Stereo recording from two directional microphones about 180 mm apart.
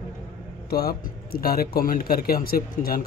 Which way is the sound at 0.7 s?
60° left (ahead or behind).